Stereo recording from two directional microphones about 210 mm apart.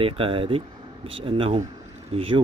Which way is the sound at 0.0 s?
25° right (ahead or behind).